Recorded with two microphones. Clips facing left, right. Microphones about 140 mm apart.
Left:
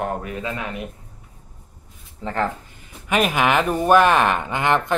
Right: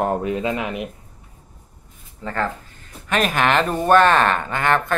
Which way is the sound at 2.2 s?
15° left (ahead or behind).